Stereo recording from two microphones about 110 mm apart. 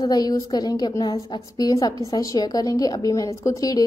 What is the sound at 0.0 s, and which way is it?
A woman's voice, 35° left (ahead or behind).